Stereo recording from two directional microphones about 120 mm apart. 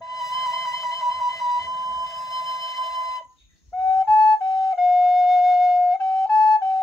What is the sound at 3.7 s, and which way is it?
Flute, centre (ahead or behind).